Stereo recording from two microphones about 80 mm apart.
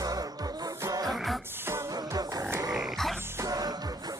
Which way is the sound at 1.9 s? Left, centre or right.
Right.